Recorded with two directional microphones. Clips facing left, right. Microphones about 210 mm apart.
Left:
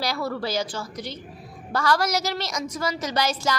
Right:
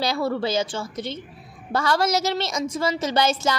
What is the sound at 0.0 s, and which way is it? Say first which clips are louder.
A woman's voice: right 4 dB; 25° right (ahead or behind).